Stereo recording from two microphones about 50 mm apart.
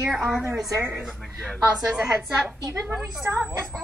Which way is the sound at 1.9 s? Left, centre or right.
Centre.